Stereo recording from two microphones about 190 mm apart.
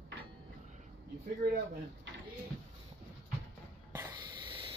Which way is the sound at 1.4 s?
60° right (ahead or behind).